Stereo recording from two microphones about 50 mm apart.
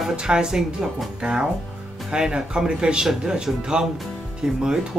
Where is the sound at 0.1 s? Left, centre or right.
Centre.